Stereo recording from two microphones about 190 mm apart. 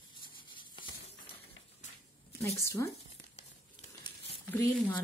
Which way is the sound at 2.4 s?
15° left (ahead or behind).